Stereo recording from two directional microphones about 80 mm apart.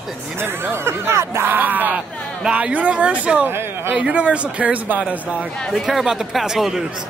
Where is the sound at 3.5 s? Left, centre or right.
Right.